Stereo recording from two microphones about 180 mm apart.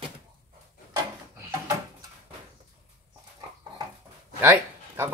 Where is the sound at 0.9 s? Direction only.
20° right (ahead or behind).